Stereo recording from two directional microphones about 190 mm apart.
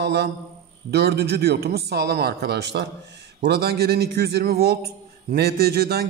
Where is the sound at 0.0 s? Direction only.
60° right (ahead or behind).